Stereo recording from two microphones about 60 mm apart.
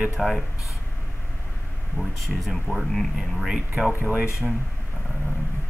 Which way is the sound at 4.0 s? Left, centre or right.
Right.